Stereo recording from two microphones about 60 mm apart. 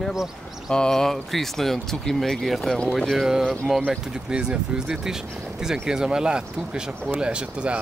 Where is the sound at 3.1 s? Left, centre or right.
Centre.